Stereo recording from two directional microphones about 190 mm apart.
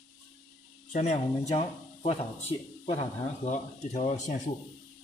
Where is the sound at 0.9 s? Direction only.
40° left (ahead or behind).